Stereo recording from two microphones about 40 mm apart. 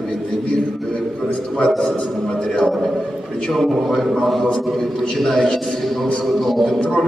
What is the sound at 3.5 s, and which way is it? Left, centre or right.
A man's voice, centre.